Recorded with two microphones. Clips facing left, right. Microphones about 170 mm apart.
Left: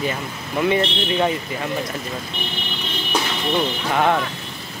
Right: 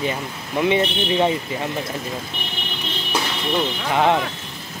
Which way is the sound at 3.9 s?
15° right (ahead or behind).